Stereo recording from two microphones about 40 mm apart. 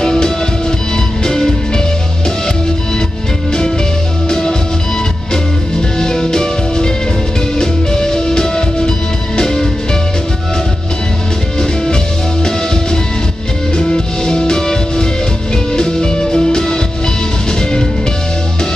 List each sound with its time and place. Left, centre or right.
0.0 s music: centre
4.3 s music: centre
13.7 s music: centre